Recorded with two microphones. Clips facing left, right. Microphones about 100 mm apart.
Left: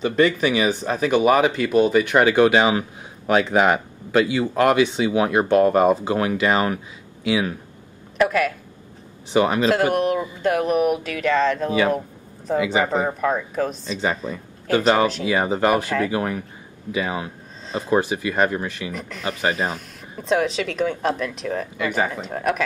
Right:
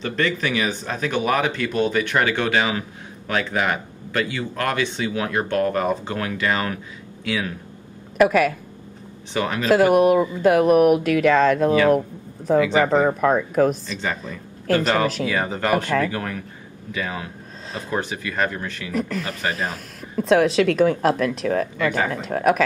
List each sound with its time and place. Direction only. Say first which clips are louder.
0.0 s speech: left 5 dB; 15° left (ahead or behind)
8.2 s speech: right 3 dB; 5° right (ahead or behind)
9.3 s speech: left 6 dB; 15° left (ahead or behind)
9.7 s speech: right 4 dB; 5° right (ahead or behind)
12.5 s speech: right 3 dB; 15° left (ahead or behind); by 13.7 s centre (ahead or behind)
15.2 s speech: left 3 dB; 15° left (ahead or behind)
17.6 s speech: left 5 dB; centre (ahead or behind)
17.9 s speech: left 5 dB; 15° left (ahead or behind)
18.9 s speech: right 3 dB; centre (ahead or behind)